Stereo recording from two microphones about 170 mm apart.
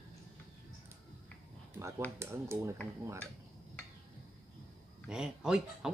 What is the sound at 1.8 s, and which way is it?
Speech, 15° right (ahead or behind).